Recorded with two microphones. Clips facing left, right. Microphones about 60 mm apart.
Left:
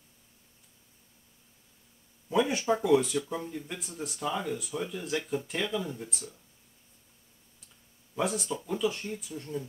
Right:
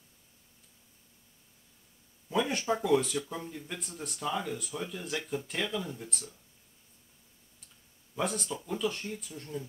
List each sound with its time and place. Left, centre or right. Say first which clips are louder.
2.2 s speech: left 3 dB; centre
8.1 s speech: left 3 dB; centre